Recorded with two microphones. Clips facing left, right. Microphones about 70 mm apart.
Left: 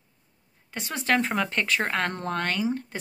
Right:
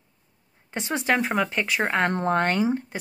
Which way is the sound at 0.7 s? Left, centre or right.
Right.